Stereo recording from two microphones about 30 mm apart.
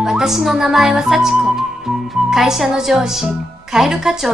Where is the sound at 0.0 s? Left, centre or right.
Centre.